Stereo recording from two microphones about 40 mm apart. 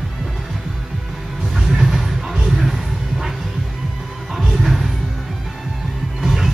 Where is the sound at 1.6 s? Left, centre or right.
Centre.